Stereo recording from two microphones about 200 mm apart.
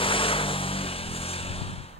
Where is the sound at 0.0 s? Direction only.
25° left (ahead or behind).